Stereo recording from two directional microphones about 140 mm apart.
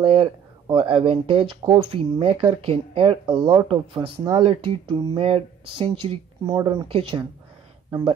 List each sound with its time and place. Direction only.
0.0 s speech: 40° right (ahead or behind)